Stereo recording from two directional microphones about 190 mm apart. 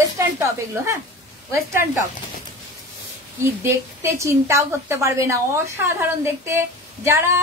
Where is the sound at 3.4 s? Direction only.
15° right (ahead or behind).